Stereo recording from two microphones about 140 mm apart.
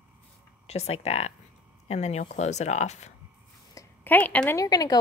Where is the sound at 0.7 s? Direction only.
50° left (ahead or behind).